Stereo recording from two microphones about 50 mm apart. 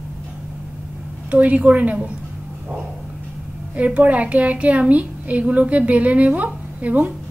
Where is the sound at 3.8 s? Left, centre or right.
Right.